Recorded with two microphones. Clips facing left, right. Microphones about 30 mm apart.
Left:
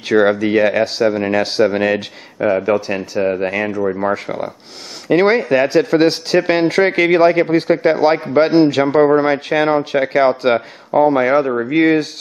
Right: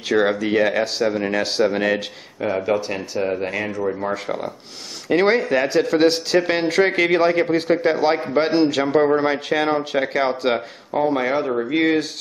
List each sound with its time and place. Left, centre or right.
0.1 s a man's voice: centre
5.0 s a man's voice: centre
11.6 s a man's voice: centre